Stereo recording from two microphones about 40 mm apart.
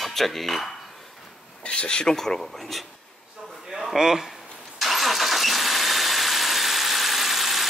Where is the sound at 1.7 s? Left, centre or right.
Left.